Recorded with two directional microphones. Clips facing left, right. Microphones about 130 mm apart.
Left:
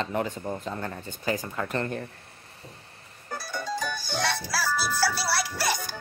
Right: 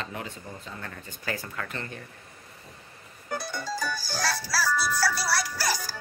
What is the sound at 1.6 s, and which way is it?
Speech, 45° left (ahead or behind).